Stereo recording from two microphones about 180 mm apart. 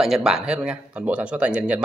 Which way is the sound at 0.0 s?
5° right (ahead or behind).